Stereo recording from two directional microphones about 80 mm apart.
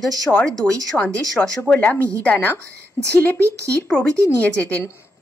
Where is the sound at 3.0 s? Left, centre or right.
Left.